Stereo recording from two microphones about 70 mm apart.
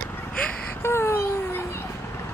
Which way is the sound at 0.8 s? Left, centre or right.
Left.